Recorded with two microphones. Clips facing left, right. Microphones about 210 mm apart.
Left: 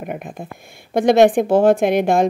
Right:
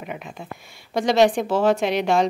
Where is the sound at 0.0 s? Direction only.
50° left (ahead or behind).